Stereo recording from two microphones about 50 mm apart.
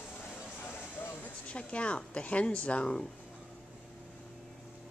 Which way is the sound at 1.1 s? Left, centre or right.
Left.